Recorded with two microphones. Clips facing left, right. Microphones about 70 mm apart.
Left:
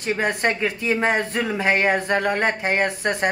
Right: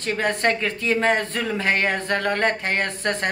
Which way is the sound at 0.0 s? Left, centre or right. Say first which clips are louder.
Even; centre.